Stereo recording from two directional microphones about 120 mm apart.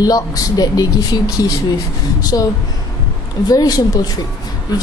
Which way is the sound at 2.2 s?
30° left (ahead or behind).